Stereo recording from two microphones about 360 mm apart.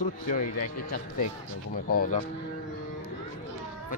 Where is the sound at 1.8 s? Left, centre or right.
Left.